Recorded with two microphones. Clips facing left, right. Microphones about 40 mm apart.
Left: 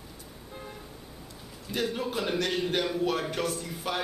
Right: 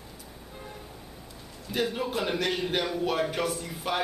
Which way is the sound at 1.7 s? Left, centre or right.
Centre.